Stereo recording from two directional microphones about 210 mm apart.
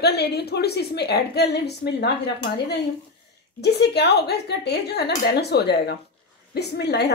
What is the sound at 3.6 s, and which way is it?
A woman's voice, 50° left (ahead or behind).